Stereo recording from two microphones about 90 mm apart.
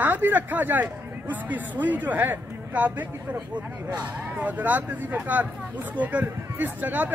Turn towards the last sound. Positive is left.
turn(degrees=-20)  # may be behind; listen again after turning